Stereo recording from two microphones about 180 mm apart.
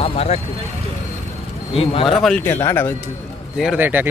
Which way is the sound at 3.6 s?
5° right (ahead or behind).